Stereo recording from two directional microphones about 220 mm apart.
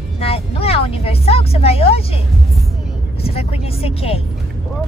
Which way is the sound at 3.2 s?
25° left (ahead or behind).